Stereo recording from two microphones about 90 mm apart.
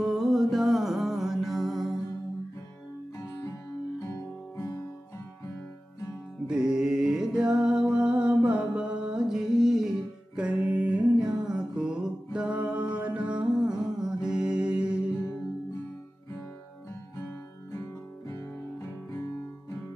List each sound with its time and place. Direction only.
0.0 s music: centre (ahead or behind)
4.6 s guitar: 40° left (ahead or behind)
6.4 s music: 10° right (ahead or behind)
10.3 s music: 15° right (ahead or behind)
17.7 s guitar: 35° left (ahead or behind)